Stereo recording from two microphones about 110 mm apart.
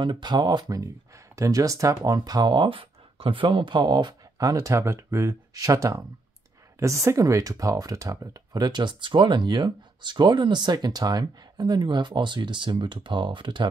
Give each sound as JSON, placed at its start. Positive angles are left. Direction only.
{"t": 0.0, "sound": "speech", "side_deg": -40}